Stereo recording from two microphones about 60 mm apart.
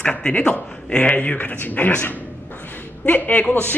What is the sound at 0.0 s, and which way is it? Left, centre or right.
A man's voice, centre.